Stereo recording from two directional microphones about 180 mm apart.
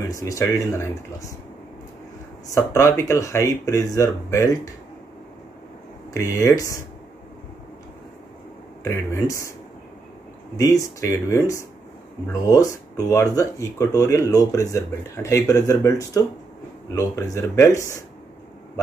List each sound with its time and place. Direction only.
0.1 s speech: 20° left (ahead or behind)
2.5 s speech: 15° left (ahead or behind)
6.1 s speech: 20° left (ahead or behind)
8.8 s speech: 15° left (ahead or behind)
11.0 s speech: 15° left (ahead or behind)